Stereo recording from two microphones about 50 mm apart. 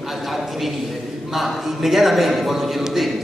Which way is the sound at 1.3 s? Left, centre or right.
Centre.